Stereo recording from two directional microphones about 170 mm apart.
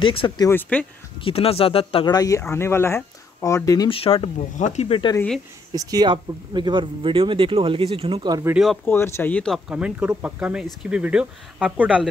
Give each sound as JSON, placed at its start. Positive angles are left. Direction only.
{"t": 0.0, "sound": "speech", "side_deg": 30}
{"t": 0.5, "sound": "speech", "side_deg": 10}
{"t": 1.2, "sound": "speech", "side_deg": 35}
{"t": 4.4, "sound": "speech", "side_deg": 45}
{"t": 5.7, "sound": "speech", "side_deg": -20}
{"t": 8.8, "sound": "speech", "side_deg": 15}
{"t": 9.7, "sound": "speech", "side_deg": -5}